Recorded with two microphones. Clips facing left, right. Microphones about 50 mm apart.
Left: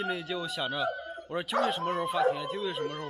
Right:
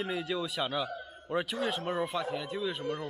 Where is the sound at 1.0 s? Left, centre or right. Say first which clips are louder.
Left 7 dB; left.